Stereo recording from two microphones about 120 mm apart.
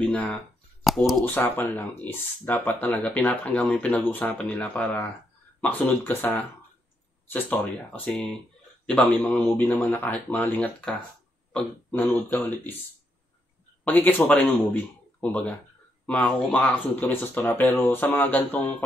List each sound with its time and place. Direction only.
0.0 s speech: 5° left (ahead or behind)
1.2 s speech: 20° left (ahead or behind)
13.8 s speech: 15° left (ahead or behind)